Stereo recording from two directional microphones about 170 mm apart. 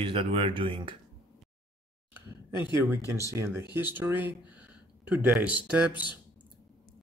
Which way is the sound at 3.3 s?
15° right (ahead or behind).